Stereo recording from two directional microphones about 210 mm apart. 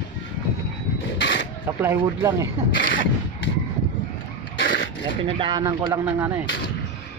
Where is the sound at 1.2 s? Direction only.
60° left (ahead or behind).